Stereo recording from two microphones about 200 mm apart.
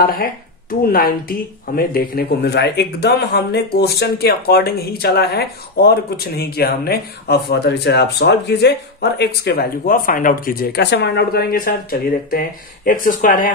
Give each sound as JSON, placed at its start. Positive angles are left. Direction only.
{"t": 0.0, "sound": "speech", "side_deg": 45}